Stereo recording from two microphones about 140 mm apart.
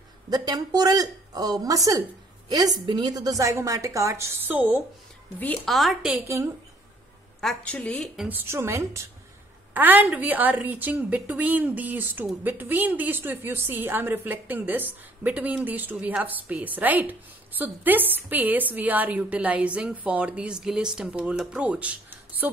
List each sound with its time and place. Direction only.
0.3 s a woman's voice: 30° right (ahead or behind); by 4.8 s 10° right (ahead or behind)
5.7 s a woman's voice: centre (ahead or behind)
7.3 s a woman's voice: 5° left (ahead or behind)
8.3 s a woman's voice: 15° right (ahead or behind)